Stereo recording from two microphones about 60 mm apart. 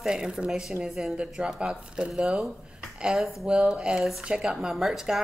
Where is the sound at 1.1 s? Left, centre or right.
Centre.